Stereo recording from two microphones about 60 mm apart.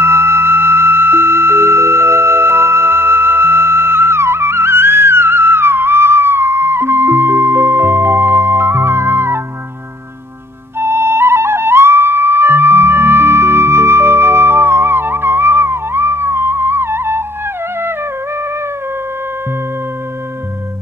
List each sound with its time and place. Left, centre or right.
0.0 s music: right
10.8 s flute: right